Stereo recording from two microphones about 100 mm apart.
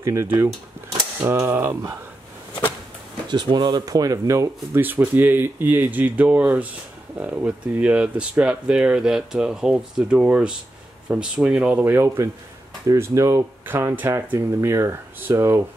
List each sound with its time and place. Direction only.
0.0 s speech: 25° right (ahead or behind)
3.3 s speech: 50° right (ahead or behind); by 4.5 s 35° right (ahead or behind)
4.7 s speech: 20° right (ahead or behind)
11.8 s speech: 25° right (ahead or behind)